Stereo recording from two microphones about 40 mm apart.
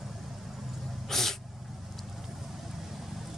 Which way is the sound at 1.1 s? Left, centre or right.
Centre.